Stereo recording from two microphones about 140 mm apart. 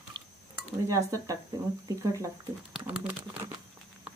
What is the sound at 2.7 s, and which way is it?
Speech, 10° right (ahead or behind).